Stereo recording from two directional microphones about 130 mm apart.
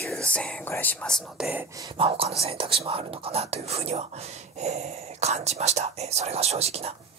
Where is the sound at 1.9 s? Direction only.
45° right (ahead or behind).